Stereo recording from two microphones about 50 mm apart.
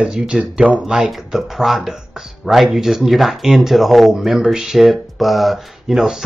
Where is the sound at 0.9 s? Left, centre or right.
Centre.